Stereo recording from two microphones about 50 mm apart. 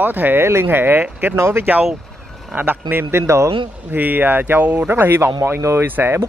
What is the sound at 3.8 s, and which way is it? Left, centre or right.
Speech, right.